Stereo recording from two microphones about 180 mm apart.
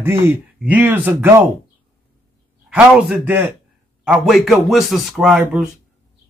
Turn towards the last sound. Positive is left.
turn(degrees=-5)  # may be behind; listen again after turning